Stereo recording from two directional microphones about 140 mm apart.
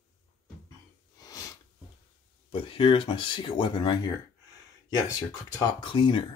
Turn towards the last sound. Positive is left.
turn(degrees=35)  # may be behind; listen again after turning